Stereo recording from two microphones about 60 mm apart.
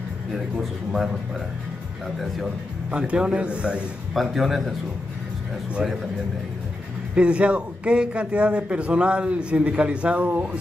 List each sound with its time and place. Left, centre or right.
0.6 s a man's voice: centre
2.9 s a man's voice: centre
4.1 s a man's voice: centre
7.2 s a man's voice: centre